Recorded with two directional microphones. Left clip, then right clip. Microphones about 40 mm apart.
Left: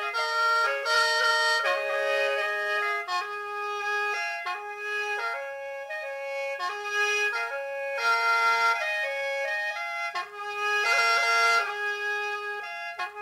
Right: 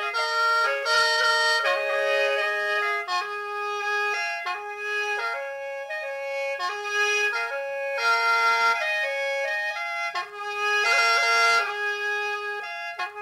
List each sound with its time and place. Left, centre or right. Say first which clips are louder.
0.1 s music: right 2 dB; right
0.6 s music: right 2 dB; right
1.5 s music: right 2 dB; right
7.1 s music: right 2 dB; right
9.2 s music: right 3 dB; right
10.6 s bagpipes: right 3 dB; right
11.2 s music: right 2 dB; right